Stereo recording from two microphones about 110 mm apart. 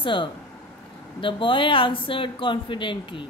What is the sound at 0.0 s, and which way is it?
A woman's voice, 50° left (ahead or behind).